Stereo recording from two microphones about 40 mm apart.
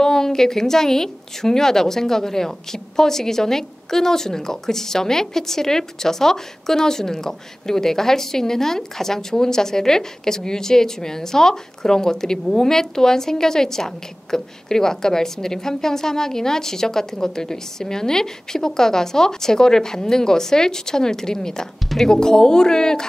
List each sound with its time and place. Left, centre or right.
0.0 s a woman's voice: centre
22.1 s a woman's voice: centre